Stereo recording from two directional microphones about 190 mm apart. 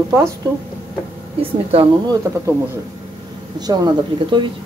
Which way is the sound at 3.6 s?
20° right (ahead or behind).